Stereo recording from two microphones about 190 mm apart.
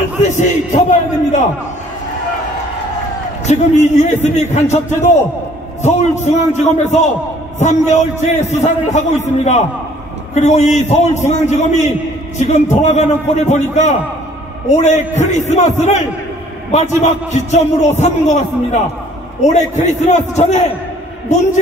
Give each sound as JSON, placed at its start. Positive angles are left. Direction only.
{"t": 0.2, "sound": "a man's voice", "side_deg": 40}
{"t": 3.4, "sound": "a man's voice", "side_deg": 35}